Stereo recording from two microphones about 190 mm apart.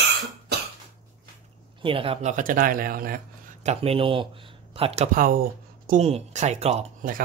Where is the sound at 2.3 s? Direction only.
45° right (ahead or behind).